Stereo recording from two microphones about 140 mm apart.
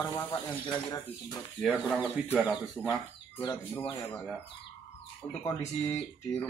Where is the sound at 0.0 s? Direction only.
20° left (ahead or behind).